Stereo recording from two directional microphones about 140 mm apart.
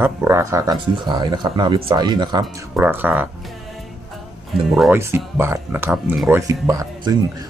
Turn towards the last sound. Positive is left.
turn(degrees=-25)  # may be behind; listen again after turning